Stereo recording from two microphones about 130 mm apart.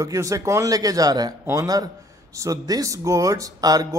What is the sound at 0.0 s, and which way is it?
Speech, 25° right (ahead or behind).